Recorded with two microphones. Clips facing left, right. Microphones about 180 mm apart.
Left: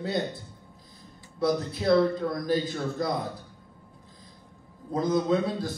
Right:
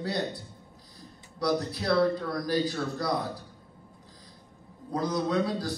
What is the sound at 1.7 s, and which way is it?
Speech, 20° left (ahead or behind).